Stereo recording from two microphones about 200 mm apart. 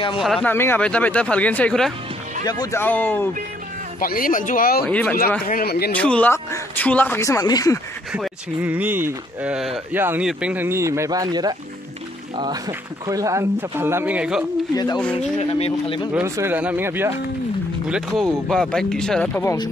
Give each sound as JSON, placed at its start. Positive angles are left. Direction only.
{"t": 0.2, "sound": "speech", "side_deg": 5}
{"t": 2.4, "sound": "speech", "side_deg": 20}
{"t": 4.0, "sound": "speech", "side_deg": 45}
{"t": 4.8, "sound": "speech", "side_deg": 5}
{"t": 5.5, "sound": "speech", "side_deg": 50}
{"t": 5.9, "sound": "speech", "side_deg": 5}
{"t": 8.1, "sound": "speech", "side_deg": -5}
{"t": 15.1, "sound": "speech", "side_deg": 30}
{"t": 16.1, "sound": "speech", "side_deg": -10}